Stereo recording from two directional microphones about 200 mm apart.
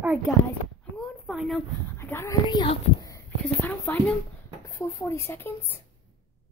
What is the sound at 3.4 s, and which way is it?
Speech, 10° left (ahead or behind).